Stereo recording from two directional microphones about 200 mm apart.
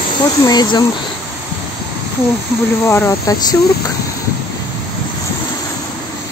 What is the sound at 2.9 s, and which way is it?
Speech, 15° left (ahead or behind).